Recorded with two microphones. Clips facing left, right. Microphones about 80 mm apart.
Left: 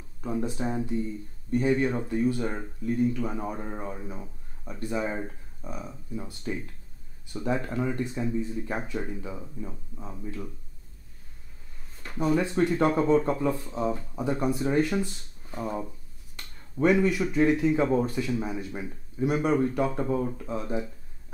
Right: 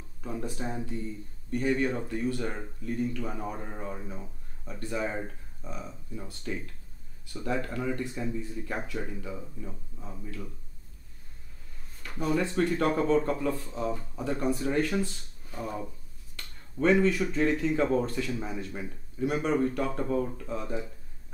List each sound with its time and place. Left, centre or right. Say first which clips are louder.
0.2 s speech: left 5 dB; left
12.2 s speech: left 3 dB; centre